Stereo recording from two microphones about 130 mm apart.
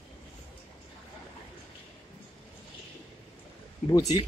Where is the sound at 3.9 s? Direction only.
30° left (ahead or behind).